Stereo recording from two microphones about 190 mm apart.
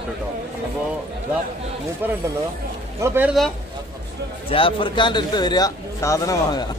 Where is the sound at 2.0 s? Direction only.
10° right (ahead or behind).